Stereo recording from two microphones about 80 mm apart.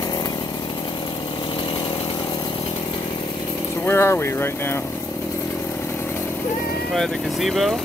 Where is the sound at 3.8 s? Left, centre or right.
Left.